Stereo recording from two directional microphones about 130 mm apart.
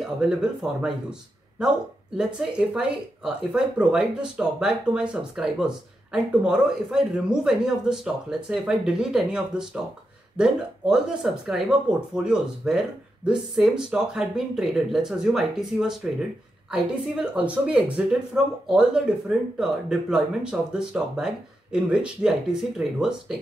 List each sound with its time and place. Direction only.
0.0 s speech: 5° right (ahead or behind)
2.1 s speech: 5° right (ahead or behind)